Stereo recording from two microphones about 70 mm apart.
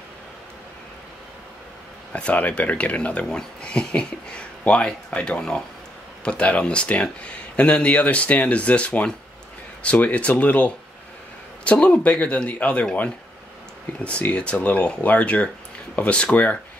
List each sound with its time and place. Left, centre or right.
2.1 s speech: centre
14.0 s speech: centre